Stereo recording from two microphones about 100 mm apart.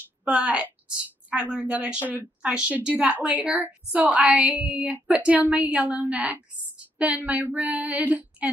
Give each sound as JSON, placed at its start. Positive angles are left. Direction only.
{"t": 0.2, "sound": "a woman's voice", "side_deg": -15}